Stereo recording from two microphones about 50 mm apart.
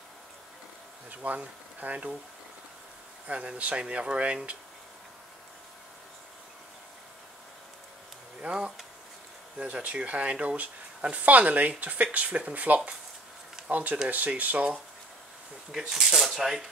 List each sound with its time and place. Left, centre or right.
1.2 s speech: right
3.3 s speech: right
8.4 s speech: right
15.9 s speech: centre